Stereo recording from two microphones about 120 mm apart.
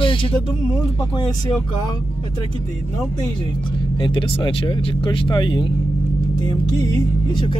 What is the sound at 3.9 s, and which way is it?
Speech, 45° left (ahead or behind).